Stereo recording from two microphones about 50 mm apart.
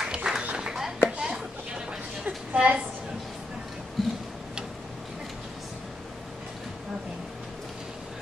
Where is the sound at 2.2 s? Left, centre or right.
Right.